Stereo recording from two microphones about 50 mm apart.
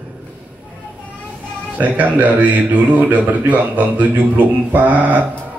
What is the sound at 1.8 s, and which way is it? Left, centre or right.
Speech, right.